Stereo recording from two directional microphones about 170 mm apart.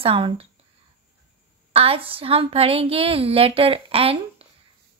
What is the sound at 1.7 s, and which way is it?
A woman's voice, 35° right (ahead or behind).